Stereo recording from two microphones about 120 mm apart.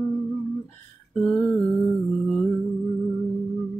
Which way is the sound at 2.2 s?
5° left (ahead or behind).